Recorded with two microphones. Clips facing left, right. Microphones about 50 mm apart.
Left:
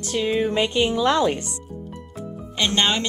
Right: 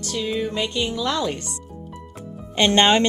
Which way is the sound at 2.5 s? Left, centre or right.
Right.